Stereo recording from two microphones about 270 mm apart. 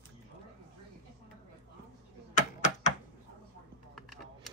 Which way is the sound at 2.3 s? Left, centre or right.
Left.